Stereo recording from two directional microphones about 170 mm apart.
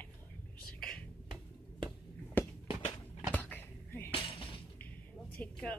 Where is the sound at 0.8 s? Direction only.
5° left (ahead or behind).